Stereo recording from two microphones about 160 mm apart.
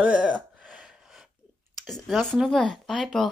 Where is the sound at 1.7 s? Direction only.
Centre (ahead or behind).